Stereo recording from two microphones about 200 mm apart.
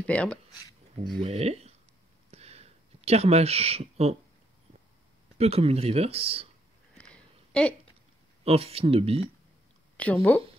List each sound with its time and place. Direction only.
0.0 s speech: 5° left (ahead or behind)
1.2 s speech: 30° right (ahead or behind)
2.3 s a sound: 30° right (ahead or behind)
5.4 s speech: 30° right (ahead or behind)
7.0 s a sound: 5° left (ahead or behind)
8.5 s speech: 30° right (ahead or behind)
10.0 s speech: 5° left (ahead or behind)